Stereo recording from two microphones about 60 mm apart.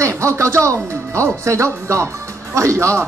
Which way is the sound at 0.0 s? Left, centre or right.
Right.